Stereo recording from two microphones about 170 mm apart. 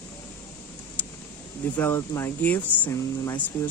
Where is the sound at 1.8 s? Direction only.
15° left (ahead or behind).